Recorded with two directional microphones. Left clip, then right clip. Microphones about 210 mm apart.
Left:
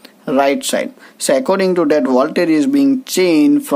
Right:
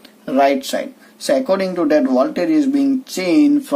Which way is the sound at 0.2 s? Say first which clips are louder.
Left 1 dB; 30° left (ahead or behind).